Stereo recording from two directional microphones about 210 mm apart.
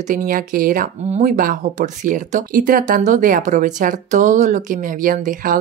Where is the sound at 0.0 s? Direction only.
40° right (ahead or behind).